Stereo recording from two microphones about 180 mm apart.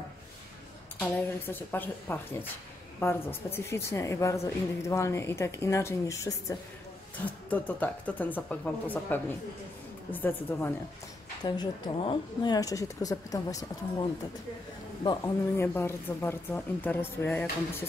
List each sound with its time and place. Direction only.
0.9 s a woman's voice: 10° left (ahead or behind)
7.4 s a woman's voice: 10° left (ahead or behind)
11.4 s speech: 25° left (ahead or behind)
15.0 s a woman's voice: 15° left (ahead or behind)